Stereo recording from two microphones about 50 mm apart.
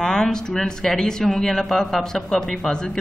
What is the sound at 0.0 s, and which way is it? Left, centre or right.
A woman's voice, centre.